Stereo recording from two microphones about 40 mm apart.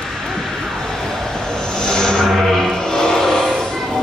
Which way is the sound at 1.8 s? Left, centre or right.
Centre.